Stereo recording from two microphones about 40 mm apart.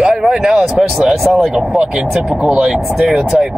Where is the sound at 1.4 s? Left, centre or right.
Centre.